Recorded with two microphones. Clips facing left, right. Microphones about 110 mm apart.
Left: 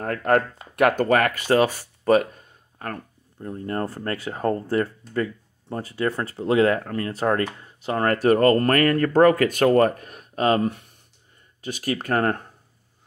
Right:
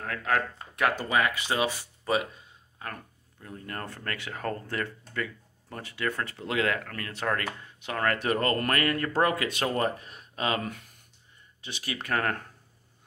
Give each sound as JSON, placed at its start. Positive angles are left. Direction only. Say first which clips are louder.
{"t": 0.0, "sound": "speech", "louder": "left 8 dB", "side_deg": 50}
{"t": 0.6, "sound": "speech", "louder": "left 8 dB", "side_deg": 60}
{"t": 10.6, "sound": "speech", "louder": "left 11 dB", "side_deg": 25}
{"t": 11.6, "sound": "speech", "louder": "left 10 dB", "side_deg": 45}
{"t": 12.3, "sound": "speech", "louder": "left 6 dB", "side_deg": 20}